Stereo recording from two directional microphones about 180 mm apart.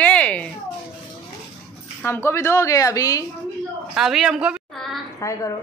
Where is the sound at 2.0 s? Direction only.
15° left (ahead or behind).